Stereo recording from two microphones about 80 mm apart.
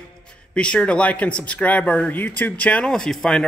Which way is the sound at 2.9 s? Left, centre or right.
Centre.